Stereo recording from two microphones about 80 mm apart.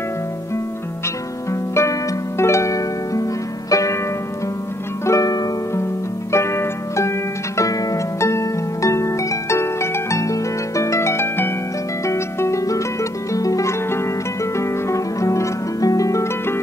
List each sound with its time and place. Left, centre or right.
1.5 s harp: left
3.7 s music: left
5.0 s music: left
6.3 s harp: left
13.3 s music: left